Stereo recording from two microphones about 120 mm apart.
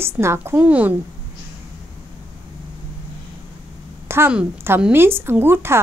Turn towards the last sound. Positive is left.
turn(degrees=-20)  # may be behind; listen again after turning